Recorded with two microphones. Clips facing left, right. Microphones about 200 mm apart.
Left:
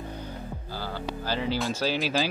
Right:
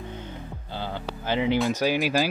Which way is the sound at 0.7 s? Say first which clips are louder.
Right 1 dB; 20° right (ahead or behind).